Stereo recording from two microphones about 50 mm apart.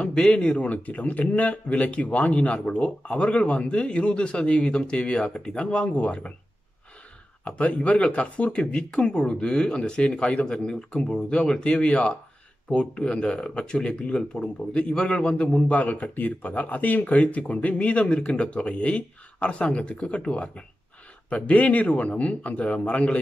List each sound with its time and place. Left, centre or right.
0.0 s speech: centre
7.4 s speech: left